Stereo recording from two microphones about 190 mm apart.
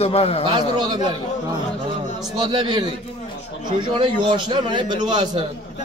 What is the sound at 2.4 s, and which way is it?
A man's voice, 25° right (ahead or behind).